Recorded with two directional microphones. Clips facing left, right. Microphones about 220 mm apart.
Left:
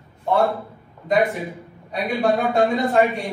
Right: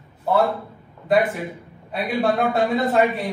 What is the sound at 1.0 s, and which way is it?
A man's voice, centre (ahead or behind).